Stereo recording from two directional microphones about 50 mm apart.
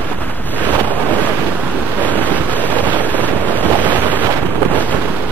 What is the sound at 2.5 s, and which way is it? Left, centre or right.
Vehicle, left.